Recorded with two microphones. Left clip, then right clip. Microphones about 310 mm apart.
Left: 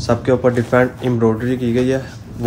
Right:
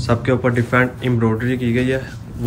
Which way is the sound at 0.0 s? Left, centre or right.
Centre.